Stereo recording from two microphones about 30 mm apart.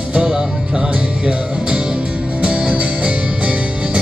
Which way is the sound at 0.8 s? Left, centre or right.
Right.